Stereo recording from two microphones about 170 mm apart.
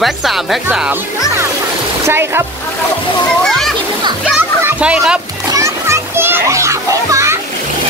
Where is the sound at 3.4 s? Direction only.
Centre (ahead or behind).